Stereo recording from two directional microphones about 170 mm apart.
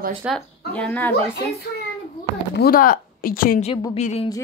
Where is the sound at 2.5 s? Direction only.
60° left (ahead or behind).